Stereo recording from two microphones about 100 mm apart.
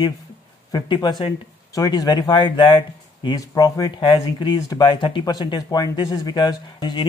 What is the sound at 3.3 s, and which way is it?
Speech, 35° left (ahead or behind).